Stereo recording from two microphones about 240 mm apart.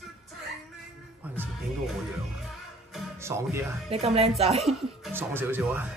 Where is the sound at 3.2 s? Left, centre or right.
Centre.